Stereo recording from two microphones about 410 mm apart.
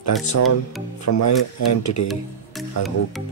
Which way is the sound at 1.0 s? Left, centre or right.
Left.